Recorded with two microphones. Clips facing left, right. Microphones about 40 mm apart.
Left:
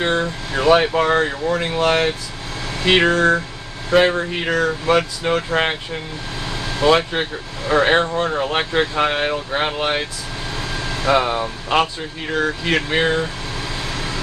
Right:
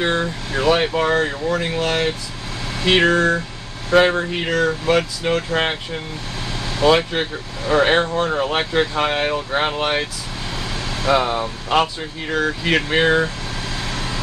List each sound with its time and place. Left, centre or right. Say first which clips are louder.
0.0 s speech: even; centre
1.8 s speech: left 7 dB; left
2.8 s speech: even; centre
6.8 s speech: even; centre
10.8 s speech: left 1 dB; centre
13.8 s vehicle: even; centre